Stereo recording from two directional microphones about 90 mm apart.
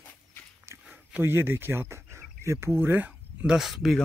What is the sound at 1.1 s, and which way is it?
Speech, 25° right (ahead or behind).